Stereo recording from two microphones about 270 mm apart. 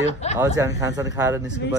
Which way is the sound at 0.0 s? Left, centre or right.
Left.